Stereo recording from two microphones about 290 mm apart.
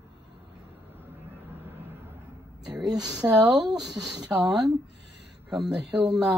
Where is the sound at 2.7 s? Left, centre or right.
Centre.